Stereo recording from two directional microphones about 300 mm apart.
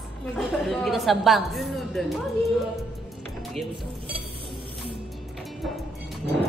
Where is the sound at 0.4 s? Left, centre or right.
Centre.